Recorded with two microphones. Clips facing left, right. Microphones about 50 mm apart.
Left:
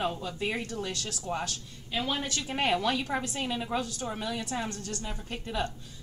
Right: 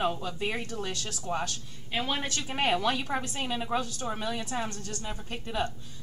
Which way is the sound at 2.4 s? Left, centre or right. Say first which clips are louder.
Right 1 dB; centre.